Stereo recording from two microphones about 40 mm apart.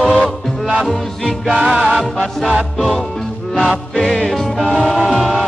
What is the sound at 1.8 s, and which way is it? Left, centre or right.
Music, centre.